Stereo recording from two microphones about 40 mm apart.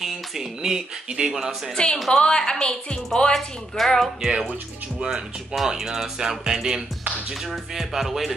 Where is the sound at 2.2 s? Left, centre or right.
Centre.